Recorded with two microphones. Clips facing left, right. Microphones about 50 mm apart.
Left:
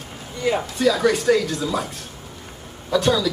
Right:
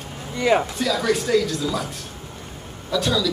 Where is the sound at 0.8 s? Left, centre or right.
Centre.